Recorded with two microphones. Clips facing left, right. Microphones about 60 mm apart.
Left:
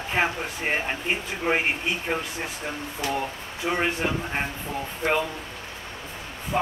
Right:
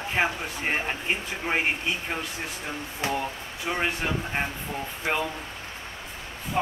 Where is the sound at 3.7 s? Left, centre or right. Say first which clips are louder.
Left 2 dB; centre.